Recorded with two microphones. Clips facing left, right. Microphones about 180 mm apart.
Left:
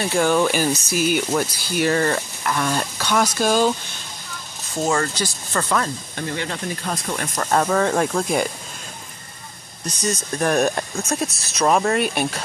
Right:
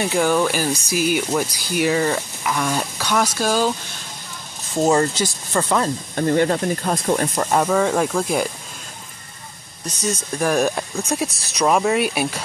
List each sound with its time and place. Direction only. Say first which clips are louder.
0.1 s speech: left 2 dB; 5° right (ahead or behind)
4.8 s speech: right 4 dB; 20° right (ahead or behind)
6.1 s speech: right 11 dB; 45° right (ahead or behind)
7.5 s speech: even; 5° right (ahead or behind)
9.8 s speech: even; 5° right (ahead or behind)